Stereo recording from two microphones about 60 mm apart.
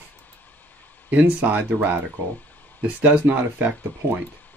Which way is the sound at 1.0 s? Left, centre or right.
Right.